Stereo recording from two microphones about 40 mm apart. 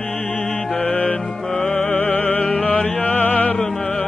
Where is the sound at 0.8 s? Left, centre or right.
Left.